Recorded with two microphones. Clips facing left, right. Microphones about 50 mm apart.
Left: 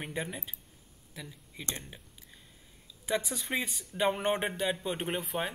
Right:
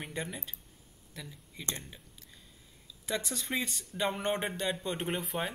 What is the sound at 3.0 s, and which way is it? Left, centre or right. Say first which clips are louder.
Speech: left 3 dB; centre.